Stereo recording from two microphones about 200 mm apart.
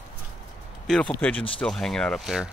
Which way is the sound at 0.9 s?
5° left (ahead or behind).